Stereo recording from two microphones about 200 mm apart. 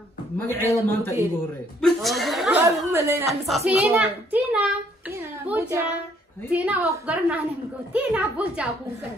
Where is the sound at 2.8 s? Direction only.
15° right (ahead or behind).